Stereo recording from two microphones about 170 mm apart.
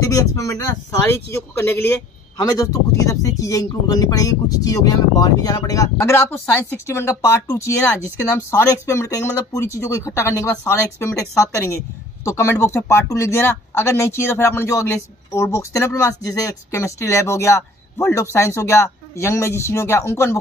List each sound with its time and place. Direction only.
0.0 s speech: 20° left (ahead or behind)